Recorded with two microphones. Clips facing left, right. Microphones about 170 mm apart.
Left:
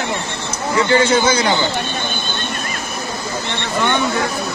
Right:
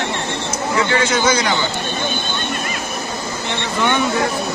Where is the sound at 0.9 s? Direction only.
30° left (ahead or behind).